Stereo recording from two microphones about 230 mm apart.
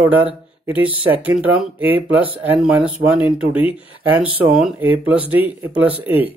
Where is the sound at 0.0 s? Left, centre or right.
Centre.